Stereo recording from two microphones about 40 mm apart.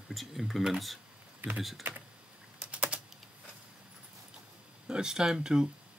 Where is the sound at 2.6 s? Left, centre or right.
Right.